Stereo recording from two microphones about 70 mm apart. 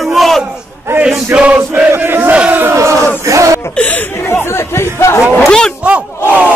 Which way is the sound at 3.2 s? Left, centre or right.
Right.